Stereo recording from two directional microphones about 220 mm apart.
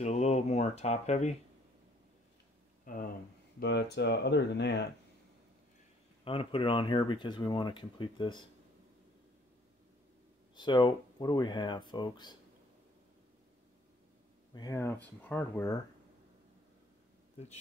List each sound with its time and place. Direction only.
0.0 s speech: 30° left (ahead or behind)
2.8 s speech: 40° left (ahead or behind)
3.5 s speech: 50° left (ahead or behind)
6.2 s speech: 25° left (ahead or behind)
10.5 s speech: 20° left (ahead or behind)
14.5 s speech: 15° left (ahead or behind)